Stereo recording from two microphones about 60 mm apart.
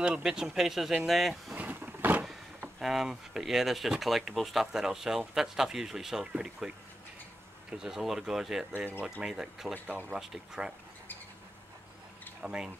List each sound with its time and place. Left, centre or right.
0.0 s speech: centre
1.6 s a sound: right
2.8 s speech: centre
7.7 s speech: centre
9.8 s speech: right
10.1 s speech: centre
12.4 s speech: centre